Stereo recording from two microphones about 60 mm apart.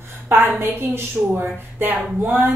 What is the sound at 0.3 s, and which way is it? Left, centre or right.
A woman's voice, right.